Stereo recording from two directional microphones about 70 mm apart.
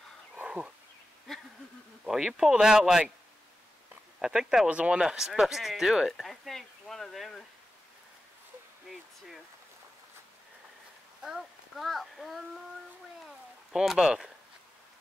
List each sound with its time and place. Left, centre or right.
2.0 s speech: centre
4.2 s speech: centre
11.2 s speech: centre
13.7 s speech: centre